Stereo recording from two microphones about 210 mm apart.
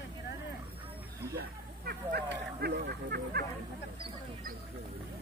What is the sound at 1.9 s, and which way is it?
Speech, 50° right (ahead or behind).